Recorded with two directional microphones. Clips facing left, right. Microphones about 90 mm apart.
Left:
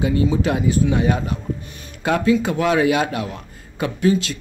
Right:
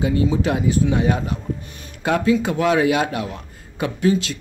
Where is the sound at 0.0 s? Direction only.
20° right (ahead or behind).